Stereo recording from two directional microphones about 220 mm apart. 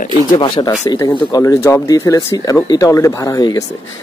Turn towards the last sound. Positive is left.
turn(degrees=15)  # may be behind; listen again after turning